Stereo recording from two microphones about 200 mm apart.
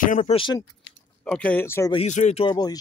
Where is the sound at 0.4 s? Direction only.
20° left (ahead or behind).